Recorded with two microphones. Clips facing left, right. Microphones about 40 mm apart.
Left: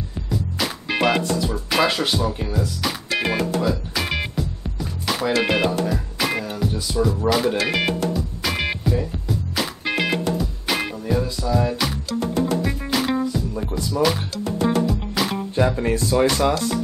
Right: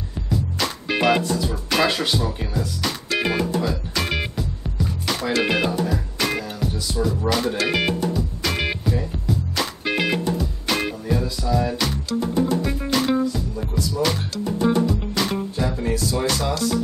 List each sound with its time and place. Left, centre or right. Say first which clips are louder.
0.6 s music: left 1 dB; centre
1.7 s speech: even; centre
2.4 s music: left 2 dB; centre
2.8 s music: right 2 dB; centre
7.0 s speech: left 3 dB; centre
8.1 s music: even; centre
11.5 s speech: left 1 dB; centre
12.6 s music: right 1 dB; centre
13.7 s music: even; left
14.9 s music: even; centre
15.5 s music: left 4 dB; left